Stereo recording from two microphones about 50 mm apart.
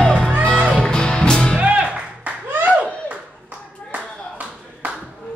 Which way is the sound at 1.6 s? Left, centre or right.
Right.